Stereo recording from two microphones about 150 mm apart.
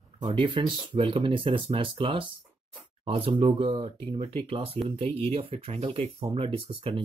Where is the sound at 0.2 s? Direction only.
30° right (ahead or behind).